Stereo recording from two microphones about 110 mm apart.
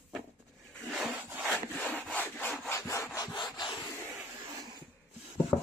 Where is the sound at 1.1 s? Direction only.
15° right (ahead or behind).